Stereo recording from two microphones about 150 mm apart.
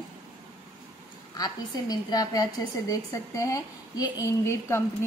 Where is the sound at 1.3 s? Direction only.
25° left (ahead or behind).